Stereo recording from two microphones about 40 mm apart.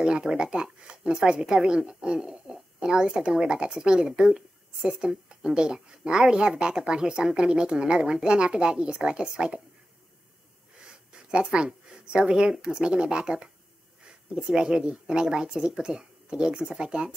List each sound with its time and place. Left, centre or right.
0.0 s speech: centre
11.1 s speech: right
14.3 s speech: centre